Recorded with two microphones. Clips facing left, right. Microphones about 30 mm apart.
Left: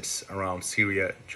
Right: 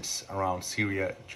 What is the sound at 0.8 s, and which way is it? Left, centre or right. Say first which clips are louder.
Speech: left 6 dB; left.